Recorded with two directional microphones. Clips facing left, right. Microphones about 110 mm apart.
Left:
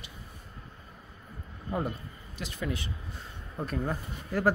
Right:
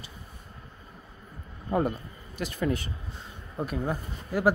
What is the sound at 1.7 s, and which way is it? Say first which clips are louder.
Speech: right 6 dB; 55° right (ahead or behind).